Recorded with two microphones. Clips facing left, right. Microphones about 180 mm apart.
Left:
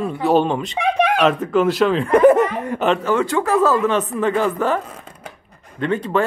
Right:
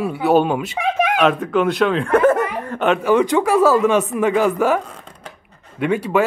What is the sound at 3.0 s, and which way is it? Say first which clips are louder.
Speech: right 3 dB; 15° right (ahead or behind).